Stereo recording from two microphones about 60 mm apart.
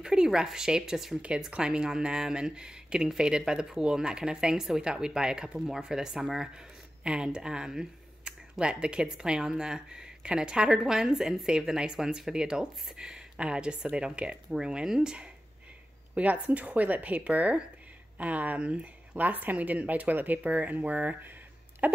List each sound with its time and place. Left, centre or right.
0.0 s speech: centre
16.2 s a woman's voice: right
21.8 s a sound: right